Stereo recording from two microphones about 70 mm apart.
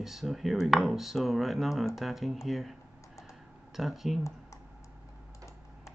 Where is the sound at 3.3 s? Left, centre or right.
Centre.